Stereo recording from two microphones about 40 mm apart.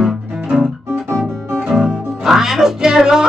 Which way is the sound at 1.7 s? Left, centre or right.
Centre.